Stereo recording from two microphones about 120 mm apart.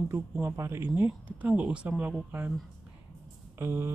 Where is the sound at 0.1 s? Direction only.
20° right (ahead or behind).